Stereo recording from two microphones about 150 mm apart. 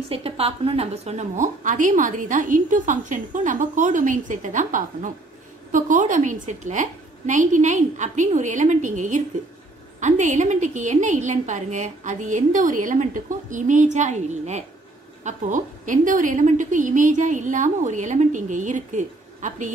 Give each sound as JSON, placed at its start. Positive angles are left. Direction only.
{"t": 0.1, "sound": "a woman's voice", "side_deg": -40}